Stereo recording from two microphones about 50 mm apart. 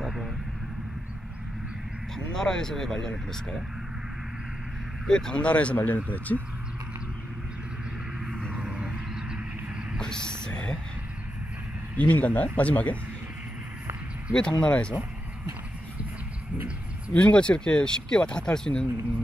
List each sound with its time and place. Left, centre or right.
0.0 s vehicle: centre
2.1 s speech: centre
5.0 s speech: centre; by 6.4 s left
8.6 s a sound: centre
9.9 s a sound: centre
12.0 s speech: left
14.3 s speech: centre
17.1 s speech: left